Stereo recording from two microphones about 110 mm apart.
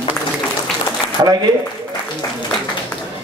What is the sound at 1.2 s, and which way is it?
Speech, 30° right (ahead or behind).